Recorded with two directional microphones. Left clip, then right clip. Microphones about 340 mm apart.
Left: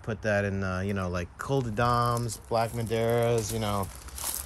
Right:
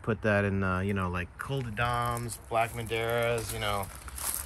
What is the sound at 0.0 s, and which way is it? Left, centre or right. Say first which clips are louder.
Speech: even; centre.